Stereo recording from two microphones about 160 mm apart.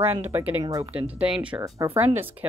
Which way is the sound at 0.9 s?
10° right (ahead or behind).